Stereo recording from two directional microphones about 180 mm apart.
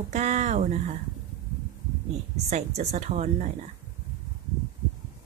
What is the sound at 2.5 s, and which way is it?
A woman's voice, 40° right (ahead or behind).